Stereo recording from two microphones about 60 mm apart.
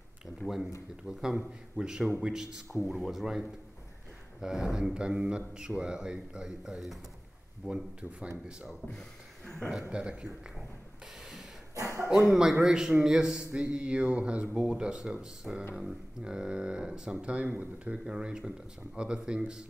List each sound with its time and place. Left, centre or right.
0.4 s speech: centre
1.0 s a man's voice: centre
7.7 s speech: right
9.8 s a man's voice: centre
11.7 s a sound: right
12.1 s a man's voice: centre